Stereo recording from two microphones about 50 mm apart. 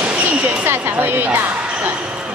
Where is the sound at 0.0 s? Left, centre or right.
Right.